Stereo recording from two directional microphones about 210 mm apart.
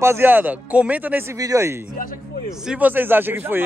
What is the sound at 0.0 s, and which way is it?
Speech, 10° right (ahead or behind).